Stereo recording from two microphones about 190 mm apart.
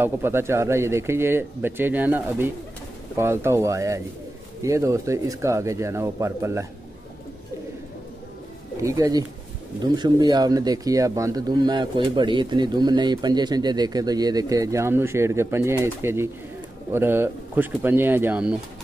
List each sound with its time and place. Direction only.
0.0 s speech: 10° right (ahead or behind)
8.8 s speech: 20° right (ahead or behind)